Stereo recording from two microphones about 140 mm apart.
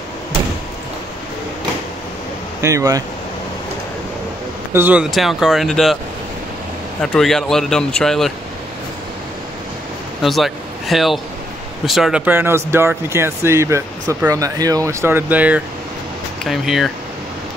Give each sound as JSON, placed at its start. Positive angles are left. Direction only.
{"t": 2.6, "sound": "speech", "side_deg": -25}
{"t": 4.7, "sound": "speech", "side_deg": -10}
{"t": 7.0, "sound": "speech", "side_deg": 5}
{"t": 10.2, "sound": "a man's voice", "side_deg": 0}
{"t": 12.3, "sound": "speech", "side_deg": -15}